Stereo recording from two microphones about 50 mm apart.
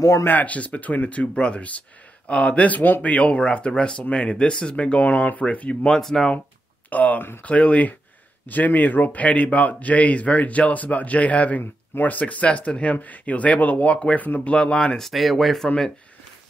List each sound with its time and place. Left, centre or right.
0.2 s speech: left
3.1 s speech: left
5.9 s speech: centre
6.9 s speech: left; by 15.0 s centre
15.0 s speech: centre